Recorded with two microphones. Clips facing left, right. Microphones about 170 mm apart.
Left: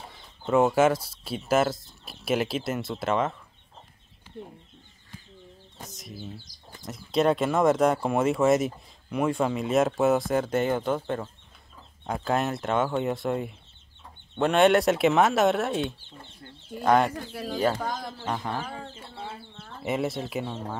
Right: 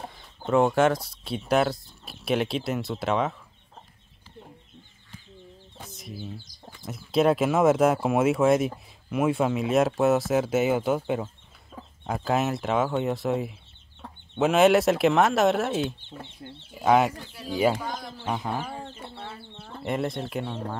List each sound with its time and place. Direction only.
0.1 s speech: centre (ahead or behind)
5.9 s bird: centre (ahead or behind)
6.8 s speech: 5° right (ahead or behind)
16.4 s speech: 20° right (ahead or behind)
16.7 s speech: 5° right (ahead or behind)
17.3 s speech: 55° left (ahead or behind)
18.2 s speech: 5° right (ahead or behind)
19.8 s speech: 5° left (ahead or behind)